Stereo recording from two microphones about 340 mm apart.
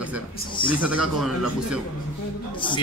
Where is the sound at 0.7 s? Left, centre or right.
Centre.